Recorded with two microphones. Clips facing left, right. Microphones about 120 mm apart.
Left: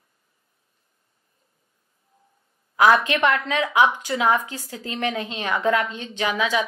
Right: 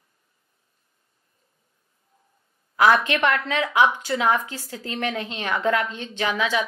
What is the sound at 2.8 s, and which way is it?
A woman's voice, 15° left (ahead or behind).